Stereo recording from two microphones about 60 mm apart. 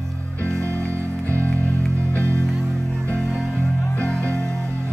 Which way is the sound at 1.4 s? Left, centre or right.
Left.